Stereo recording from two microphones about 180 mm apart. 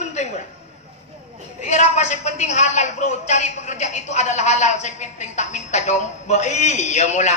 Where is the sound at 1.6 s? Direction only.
40° left (ahead or behind).